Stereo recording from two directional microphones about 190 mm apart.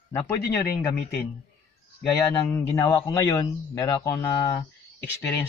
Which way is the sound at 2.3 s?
15° left (ahead or behind).